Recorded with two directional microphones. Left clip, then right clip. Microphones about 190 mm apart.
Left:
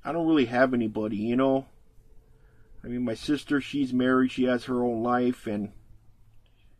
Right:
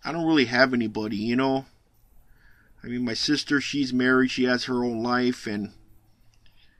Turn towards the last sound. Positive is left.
turn(degrees=-20)  # may be behind; listen again after turning